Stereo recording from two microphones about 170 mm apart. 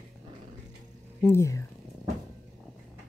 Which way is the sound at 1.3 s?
15° left (ahead or behind).